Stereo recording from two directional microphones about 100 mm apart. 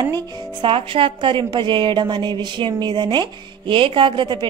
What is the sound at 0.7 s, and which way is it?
A woman's voice, 65° right (ahead or behind).